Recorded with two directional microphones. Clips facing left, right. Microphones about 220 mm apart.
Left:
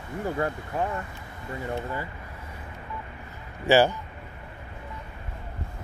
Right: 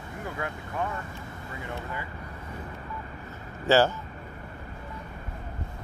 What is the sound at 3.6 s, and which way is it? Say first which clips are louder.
Speech: left 2 dB; 15° left (ahead or behind).